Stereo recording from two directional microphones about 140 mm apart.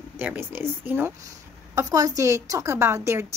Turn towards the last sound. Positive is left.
turn(degrees=-20)  # may be behind; listen again after turning